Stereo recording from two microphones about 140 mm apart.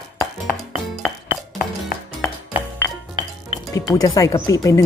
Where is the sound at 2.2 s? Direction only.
15° left (ahead or behind).